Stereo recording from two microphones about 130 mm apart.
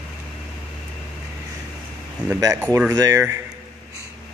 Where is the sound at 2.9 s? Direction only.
30° right (ahead or behind).